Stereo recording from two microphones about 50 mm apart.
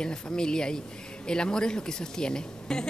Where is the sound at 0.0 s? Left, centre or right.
Centre.